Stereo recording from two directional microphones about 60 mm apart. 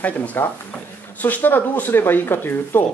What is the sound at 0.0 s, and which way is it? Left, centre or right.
Speech, left.